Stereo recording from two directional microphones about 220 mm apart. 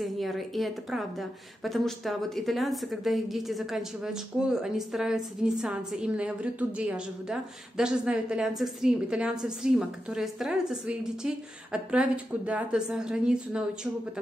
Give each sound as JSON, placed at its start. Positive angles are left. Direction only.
{"t": 0.0, "sound": "a woman's voice", "side_deg": 0}